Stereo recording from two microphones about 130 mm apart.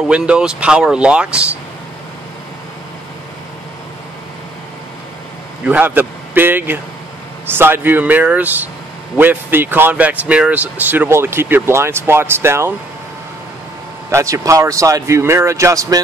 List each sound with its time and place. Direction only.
0.1 s speech: 5° right (ahead or behind)
5.7 s speech: 15° right (ahead or behind)
14.1 s speech: 25° right (ahead or behind)